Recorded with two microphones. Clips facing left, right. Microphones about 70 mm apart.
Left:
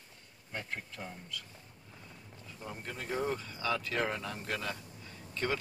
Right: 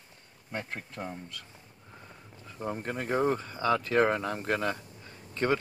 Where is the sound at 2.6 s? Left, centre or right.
Right.